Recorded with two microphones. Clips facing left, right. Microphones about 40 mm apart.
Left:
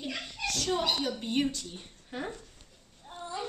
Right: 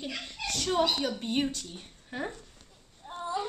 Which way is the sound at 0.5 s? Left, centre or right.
Centre.